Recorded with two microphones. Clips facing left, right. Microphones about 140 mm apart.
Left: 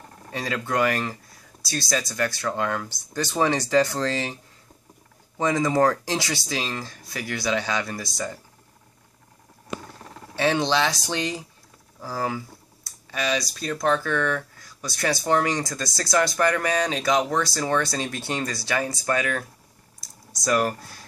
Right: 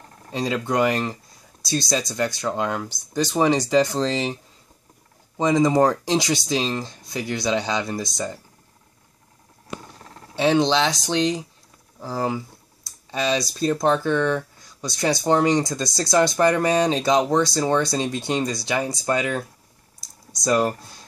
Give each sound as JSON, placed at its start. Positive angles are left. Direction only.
{"t": 0.3, "sound": "speech", "side_deg": -20}
{"t": 5.4, "sound": "speech", "side_deg": -15}
{"t": 10.3, "sound": "speech", "side_deg": -20}
{"t": 12.0, "sound": "speech", "side_deg": -20}